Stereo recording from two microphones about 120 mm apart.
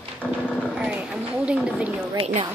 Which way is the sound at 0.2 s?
10° left (ahead or behind).